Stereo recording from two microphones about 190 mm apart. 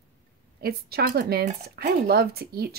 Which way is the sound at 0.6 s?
55° right (ahead or behind).